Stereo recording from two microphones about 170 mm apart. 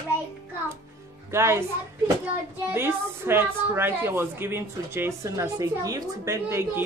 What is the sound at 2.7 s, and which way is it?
A woman's voice, 15° right (ahead or behind).